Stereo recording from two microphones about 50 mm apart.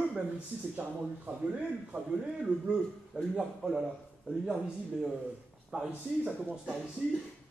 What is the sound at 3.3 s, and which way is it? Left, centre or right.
Speech, centre.